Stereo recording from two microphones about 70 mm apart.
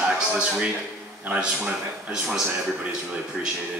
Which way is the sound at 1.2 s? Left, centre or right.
Centre.